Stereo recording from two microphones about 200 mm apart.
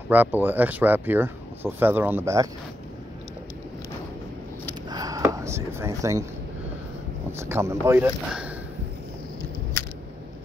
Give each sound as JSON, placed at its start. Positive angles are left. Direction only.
{"t": 0.1, "sound": "speech", "side_deg": -10}
{"t": 4.8, "sound": "a sound", "side_deg": -20}
{"t": 5.2, "sound": "chopping", "side_deg": -15}
{"t": 7.3, "sound": "speech", "side_deg": -10}